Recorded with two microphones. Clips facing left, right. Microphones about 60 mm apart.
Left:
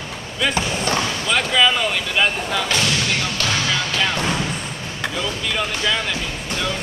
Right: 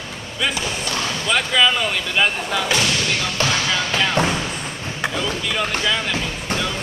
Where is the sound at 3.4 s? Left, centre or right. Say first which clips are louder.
Right 3 dB; centre.